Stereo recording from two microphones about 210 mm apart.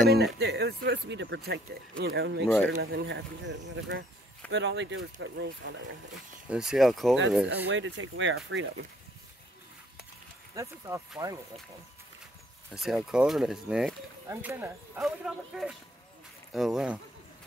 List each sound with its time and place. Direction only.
0.1 s speech: 50° right (ahead or behind)
2.4 s speech: 5° left (ahead or behind)
2.8 s speech: 55° right (ahead or behind)
6.5 s speech: 5° right (ahead or behind)
7.4 s speech: 60° right (ahead or behind)
10.5 s speech: 15° right (ahead or behind)
12.7 s speech: centre (ahead or behind)